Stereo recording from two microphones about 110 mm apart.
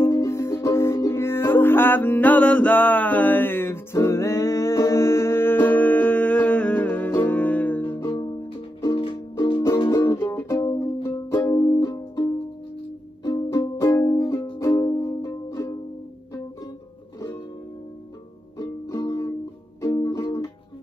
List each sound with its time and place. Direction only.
0.0 s music: 25° left (ahead or behind)
8.9 s music: 55° left (ahead or behind)
9.8 s music: 25° left (ahead or behind)
11.5 s music: 35° left (ahead or behind)
18.6 s music: 25° left (ahead or behind)